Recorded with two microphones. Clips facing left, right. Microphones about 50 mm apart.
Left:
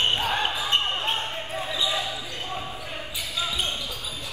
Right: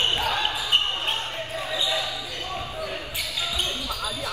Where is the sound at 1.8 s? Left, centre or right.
Left.